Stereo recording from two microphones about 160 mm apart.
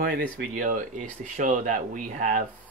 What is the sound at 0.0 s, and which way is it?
Speech, 60° right (ahead or behind).